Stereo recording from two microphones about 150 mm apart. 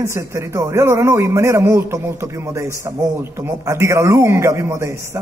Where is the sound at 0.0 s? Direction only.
20° right (ahead or behind).